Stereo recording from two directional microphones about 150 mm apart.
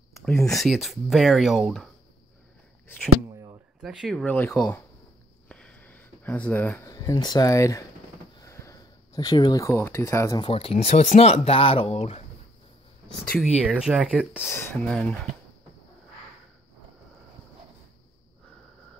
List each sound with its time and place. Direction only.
0.2 s speech: centre (ahead or behind)
3.8 s speech: centre (ahead or behind)
5.5 s a sound: 10° left (ahead or behind)
6.9 s speech: 25° left (ahead or behind)
8.4 s a sound: 20° left (ahead or behind)
10.3 s speech: 35° left (ahead or behind)
13.4 s speech: 5° right (ahead or behind)
14.5 s speech: 15° left (ahead or behind)